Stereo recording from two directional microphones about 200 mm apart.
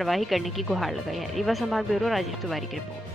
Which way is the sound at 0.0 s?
Centre (ahead or behind).